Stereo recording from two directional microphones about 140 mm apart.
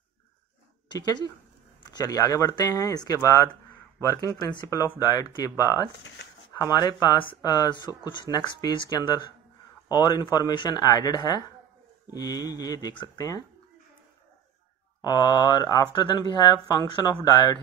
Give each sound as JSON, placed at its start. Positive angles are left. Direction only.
{"t": 0.8, "sound": "speech", "side_deg": 30}
{"t": 15.0, "sound": "speech", "side_deg": 30}